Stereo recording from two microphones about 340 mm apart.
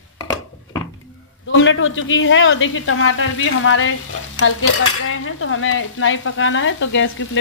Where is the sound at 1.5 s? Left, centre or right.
Left.